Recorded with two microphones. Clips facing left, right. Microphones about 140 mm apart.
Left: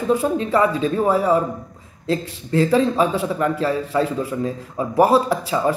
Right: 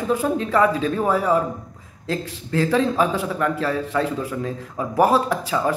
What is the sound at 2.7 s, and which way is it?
Speech, centre (ahead or behind).